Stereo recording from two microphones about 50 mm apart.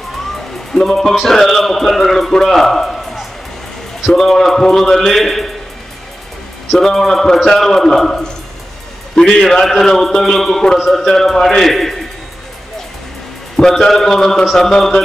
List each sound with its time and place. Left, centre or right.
0.7 s a man's voice: centre
4.1 s music: centre
6.8 s a man's voice: centre
10.8 s music: centre
13.6 s a man's voice: centre